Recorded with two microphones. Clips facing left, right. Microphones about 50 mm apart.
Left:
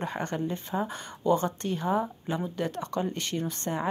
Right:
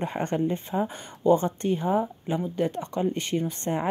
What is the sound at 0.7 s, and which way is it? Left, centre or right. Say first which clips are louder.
Speech: right 3 dB; centre.